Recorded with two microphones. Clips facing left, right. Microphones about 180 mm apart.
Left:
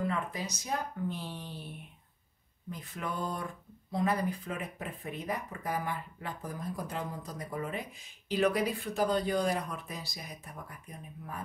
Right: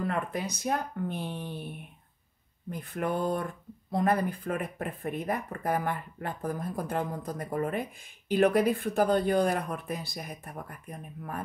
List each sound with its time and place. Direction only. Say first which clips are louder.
0.0 s speech: right 3 dB; 60° right (ahead or behind)
2.7 s speech: right 7 dB; 55° right (ahead or behind)